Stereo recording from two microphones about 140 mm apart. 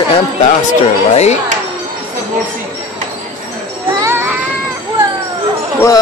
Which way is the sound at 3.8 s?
15° right (ahead or behind).